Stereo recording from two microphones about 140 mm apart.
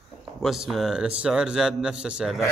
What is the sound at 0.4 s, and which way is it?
A man's voice, centre (ahead or behind).